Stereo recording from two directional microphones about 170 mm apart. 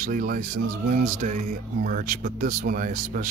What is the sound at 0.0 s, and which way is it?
Speech, 55° right (ahead or behind).